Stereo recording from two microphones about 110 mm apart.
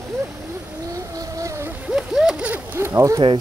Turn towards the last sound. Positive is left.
turn(degrees=-30)  # may be behind; listen again after turning